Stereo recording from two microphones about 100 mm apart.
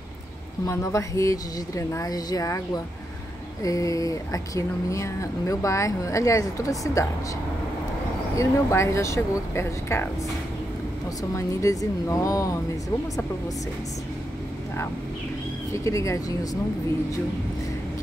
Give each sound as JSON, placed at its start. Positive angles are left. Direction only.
{"t": 0.7, "sound": "speech", "side_deg": 30}
{"t": 8.4, "sound": "speech", "side_deg": 30}
{"t": 11.3, "sound": "speech", "side_deg": 35}
{"t": 15.7, "sound": "speech", "side_deg": 30}